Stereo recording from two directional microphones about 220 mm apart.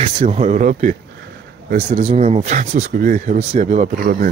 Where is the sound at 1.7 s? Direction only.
25° right (ahead or behind).